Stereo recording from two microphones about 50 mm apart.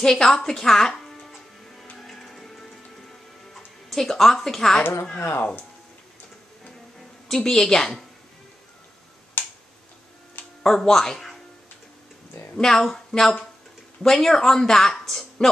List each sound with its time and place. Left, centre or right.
0.0 s speech: centre
1.2 s music: centre
2.0 s printer: centre
7.2 s speech: centre
9.4 s a sound: left
10.6 s speech: centre
12.5 s speech: centre